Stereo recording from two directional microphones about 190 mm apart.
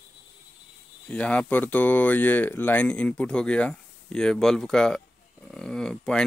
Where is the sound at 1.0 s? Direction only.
5° left (ahead or behind).